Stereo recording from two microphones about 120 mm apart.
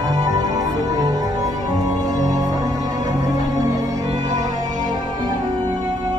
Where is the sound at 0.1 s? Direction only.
30° right (ahead or behind).